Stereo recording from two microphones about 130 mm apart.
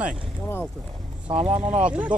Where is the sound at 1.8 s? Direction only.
10° right (ahead or behind).